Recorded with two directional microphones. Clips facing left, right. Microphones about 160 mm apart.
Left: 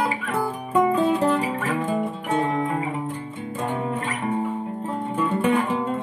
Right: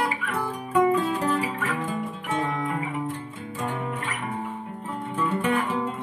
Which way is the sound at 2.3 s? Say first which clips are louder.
Left 4 dB; 35° left (ahead or behind).